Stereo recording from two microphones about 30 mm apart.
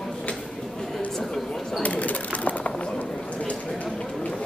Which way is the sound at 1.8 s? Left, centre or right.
Left.